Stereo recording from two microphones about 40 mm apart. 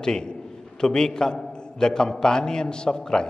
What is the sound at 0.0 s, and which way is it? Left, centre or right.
A man's voice, centre.